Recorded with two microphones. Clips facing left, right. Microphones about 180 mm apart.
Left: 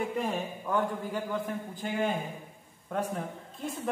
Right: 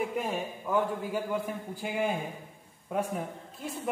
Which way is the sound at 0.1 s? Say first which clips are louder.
Left 1 dB; 5° right (ahead or behind).